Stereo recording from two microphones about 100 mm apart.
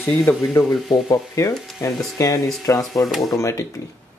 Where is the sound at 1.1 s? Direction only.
30° left (ahead or behind).